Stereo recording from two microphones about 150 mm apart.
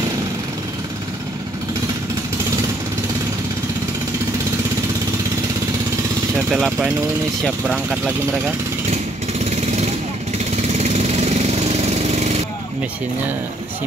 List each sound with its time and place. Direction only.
6.5 s speech: centre (ahead or behind)
10.5 s lawn mower: 45° right (ahead or behind)